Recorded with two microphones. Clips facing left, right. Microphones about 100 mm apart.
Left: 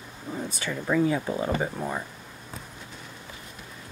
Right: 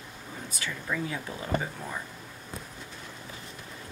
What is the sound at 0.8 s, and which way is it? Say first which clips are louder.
Speech: left 10 dB; 35° left (ahead or behind).